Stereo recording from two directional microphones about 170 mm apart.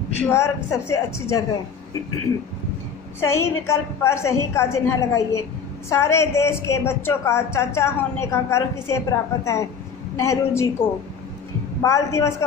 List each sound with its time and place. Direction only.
0.2 s a woman's voice: 15° left (ahead or behind)
3.3 s a woman's voice: 15° left (ahead or behind)